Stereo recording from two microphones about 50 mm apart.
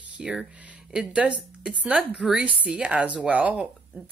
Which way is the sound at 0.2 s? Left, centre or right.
Centre.